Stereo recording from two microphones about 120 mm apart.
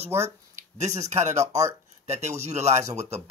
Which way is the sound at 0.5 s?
70° right (ahead or behind).